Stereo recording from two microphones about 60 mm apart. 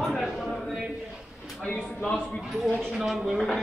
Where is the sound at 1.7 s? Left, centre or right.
Left.